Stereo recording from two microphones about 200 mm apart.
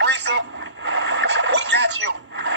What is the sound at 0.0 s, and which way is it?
Radio, 60° right (ahead or behind).